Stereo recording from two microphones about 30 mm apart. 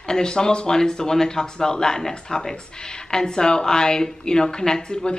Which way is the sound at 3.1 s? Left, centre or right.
Left.